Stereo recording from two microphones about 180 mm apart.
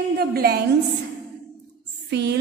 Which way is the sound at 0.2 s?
60° right (ahead or behind).